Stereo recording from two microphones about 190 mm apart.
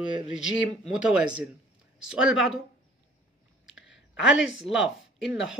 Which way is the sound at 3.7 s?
75° left (ahead or behind).